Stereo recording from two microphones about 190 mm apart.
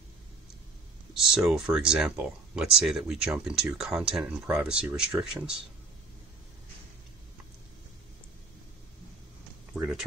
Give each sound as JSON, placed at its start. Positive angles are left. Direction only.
{"t": 1.1, "sound": "speech", "side_deg": 0}
{"t": 9.8, "sound": "speech", "side_deg": -5}